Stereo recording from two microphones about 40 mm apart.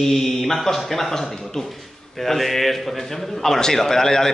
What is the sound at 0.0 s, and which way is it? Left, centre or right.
A man's voice, centre.